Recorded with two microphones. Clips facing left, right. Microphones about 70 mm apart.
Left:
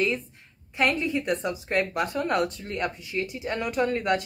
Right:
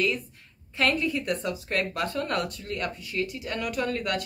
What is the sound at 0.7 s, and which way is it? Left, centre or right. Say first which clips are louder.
Speech: left 1 dB; left.